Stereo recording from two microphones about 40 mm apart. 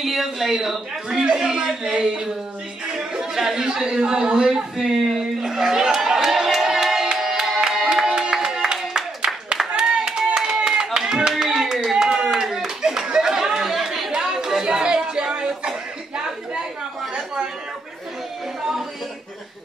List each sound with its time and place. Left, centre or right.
0.0 s a woman's voice: centre
1.1 s a man's voice: right
2.9 s music: right
3.3 s a man's voice: centre
7.2 s music: centre
8.1 s music: centre
8.9 s a sound: centre
9.7 s clapping: centre
14.2 s a sound: centre